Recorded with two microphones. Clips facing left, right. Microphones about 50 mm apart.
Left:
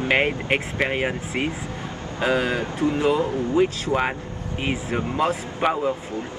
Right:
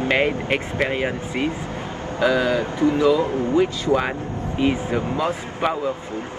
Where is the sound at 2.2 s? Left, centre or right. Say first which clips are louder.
Right 3 dB; left.